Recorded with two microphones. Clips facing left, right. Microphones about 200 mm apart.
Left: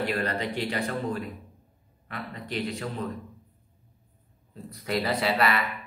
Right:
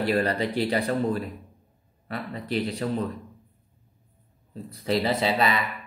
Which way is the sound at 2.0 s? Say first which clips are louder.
Right 5 dB; 35° right (ahead or behind).